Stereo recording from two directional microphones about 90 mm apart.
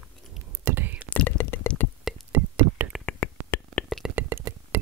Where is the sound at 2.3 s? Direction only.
25° right (ahead or behind).